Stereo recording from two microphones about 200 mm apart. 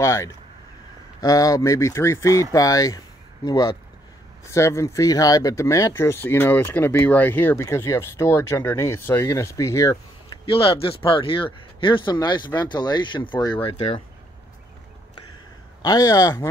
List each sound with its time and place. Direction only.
0.0 s speech: 15° left (ahead or behind)
10.4 s speech: 25° left (ahead or behind)
15.8 s speech: 20° left (ahead or behind)